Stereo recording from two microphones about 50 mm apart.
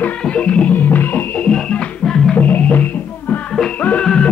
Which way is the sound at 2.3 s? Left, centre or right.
Left.